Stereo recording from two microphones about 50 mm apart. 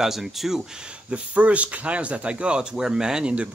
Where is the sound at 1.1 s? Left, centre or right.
Right.